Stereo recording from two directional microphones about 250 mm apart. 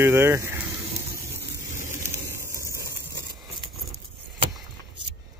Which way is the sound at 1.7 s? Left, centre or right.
Centre.